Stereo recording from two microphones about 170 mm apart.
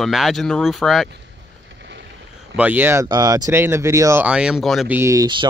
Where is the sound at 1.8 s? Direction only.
90° right.